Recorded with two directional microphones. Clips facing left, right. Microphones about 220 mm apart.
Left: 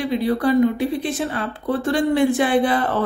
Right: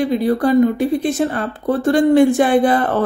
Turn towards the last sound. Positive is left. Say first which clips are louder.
# right 4 dB
turn(degrees=-50)  # may be behind; listen again after turning